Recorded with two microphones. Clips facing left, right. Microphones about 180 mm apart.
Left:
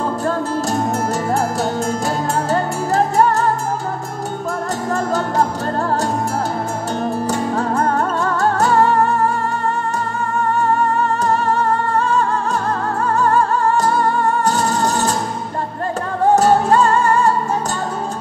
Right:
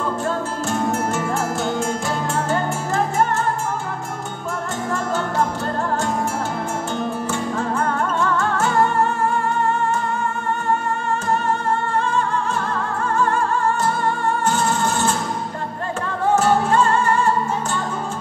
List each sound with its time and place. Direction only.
1.3 s music: 35° left (ahead or behind)
4.9 s music: 40° left (ahead or behind)
7.2 s music: 40° left (ahead or behind)
16.3 s music: 40° left (ahead or behind)